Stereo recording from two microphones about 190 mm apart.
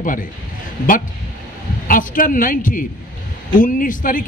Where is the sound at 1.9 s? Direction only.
45° left (ahead or behind).